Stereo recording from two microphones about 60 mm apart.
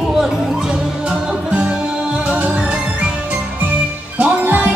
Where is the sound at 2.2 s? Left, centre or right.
Right.